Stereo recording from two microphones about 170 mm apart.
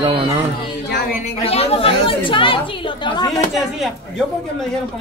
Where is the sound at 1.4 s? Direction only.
35° left (ahead or behind).